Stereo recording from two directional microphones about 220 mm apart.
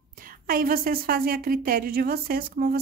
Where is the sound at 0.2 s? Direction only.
40° right (ahead or behind).